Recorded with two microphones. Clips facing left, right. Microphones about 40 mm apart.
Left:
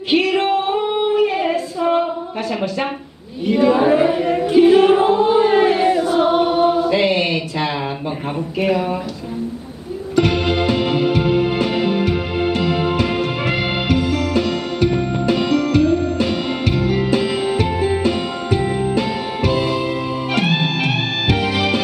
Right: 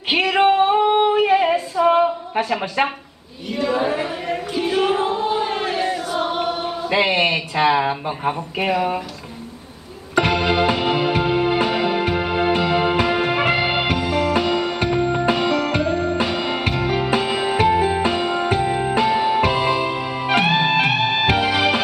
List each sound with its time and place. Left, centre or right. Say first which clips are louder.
0.1 s a sound: even; centre
0.9 s singing: right 1 dB; right
1.8 s a sound: right 2 dB; centre
3.4 s choir: left 7 dB; centre
6.9 s speech: left 1 dB; centre
10.1 s music: left 1 dB; right
11.2 s music: left 2 dB; centre
11.8 s music: left 1 dB; right
14.9 s music: even; centre
15.2 s music: left 2 dB; right
17.7 s music: even; centre
18.0 s music: right 1 dB; right